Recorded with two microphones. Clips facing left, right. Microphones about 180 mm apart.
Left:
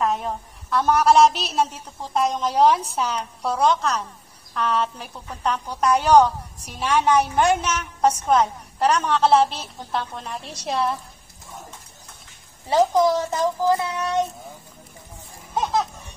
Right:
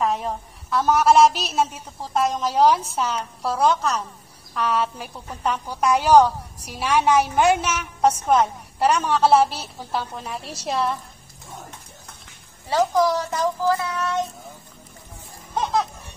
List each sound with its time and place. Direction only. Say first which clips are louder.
0.0 s a woman's voice: even; centre (ahead or behind)
12.6 s a child's voice: left 2 dB; 20° left (ahead or behind)
15.5 s music: even; centre (ahead or behind)